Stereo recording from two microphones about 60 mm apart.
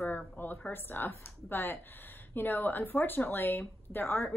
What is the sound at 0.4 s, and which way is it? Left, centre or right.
Speech, left.